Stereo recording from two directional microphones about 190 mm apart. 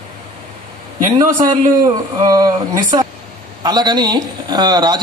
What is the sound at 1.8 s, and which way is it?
A man's voice, 20° right (ahead or behind).